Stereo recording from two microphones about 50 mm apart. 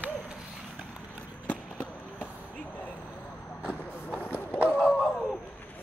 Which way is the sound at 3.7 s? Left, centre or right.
Left.